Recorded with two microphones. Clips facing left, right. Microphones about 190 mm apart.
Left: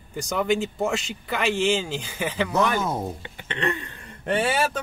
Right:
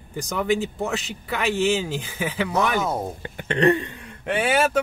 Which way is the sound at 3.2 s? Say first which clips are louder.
Right 8 dB; 45° right (ahead or behind).